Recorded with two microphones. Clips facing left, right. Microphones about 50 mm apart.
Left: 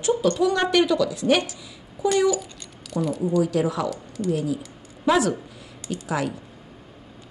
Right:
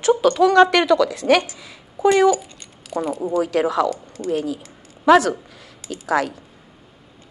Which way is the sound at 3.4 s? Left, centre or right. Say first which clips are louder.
Right 5 dB; right.